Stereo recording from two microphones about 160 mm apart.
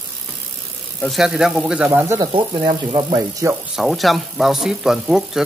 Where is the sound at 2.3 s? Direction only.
30° right (ahead or behind).